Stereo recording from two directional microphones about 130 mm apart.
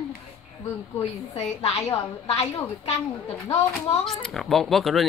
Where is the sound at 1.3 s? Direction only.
55° left (ahead or behind).